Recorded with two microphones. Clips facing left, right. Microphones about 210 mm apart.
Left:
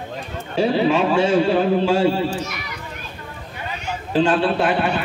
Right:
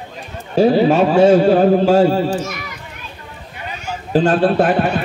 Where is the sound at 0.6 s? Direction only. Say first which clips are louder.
Right 6 dB; 45° right (ahead or behind).